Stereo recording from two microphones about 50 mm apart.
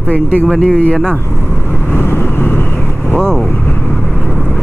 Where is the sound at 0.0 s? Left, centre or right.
Left.